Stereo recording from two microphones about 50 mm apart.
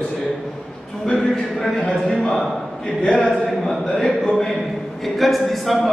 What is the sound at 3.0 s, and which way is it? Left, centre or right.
Speech, centre.